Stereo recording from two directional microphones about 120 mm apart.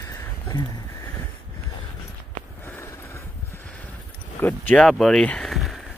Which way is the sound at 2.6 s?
20° left (ahead or behind).